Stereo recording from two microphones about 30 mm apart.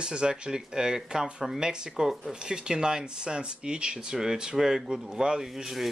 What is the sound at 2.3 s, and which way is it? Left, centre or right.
Speech, right.